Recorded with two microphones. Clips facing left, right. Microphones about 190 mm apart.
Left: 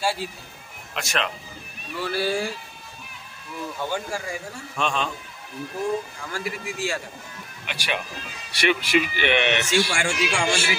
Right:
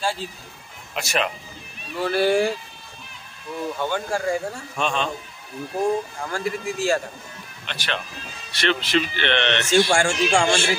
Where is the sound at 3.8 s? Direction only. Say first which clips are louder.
Right 4 dB; 60° right (ahead or behind).